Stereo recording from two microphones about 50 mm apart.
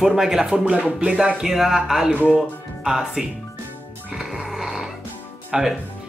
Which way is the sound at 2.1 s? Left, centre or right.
Left.